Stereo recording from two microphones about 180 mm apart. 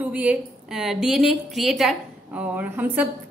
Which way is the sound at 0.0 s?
10° right (ahead or behind).